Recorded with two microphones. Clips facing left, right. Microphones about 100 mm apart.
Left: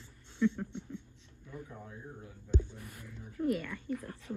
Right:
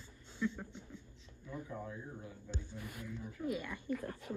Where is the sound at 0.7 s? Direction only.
70° left (ahead or behind).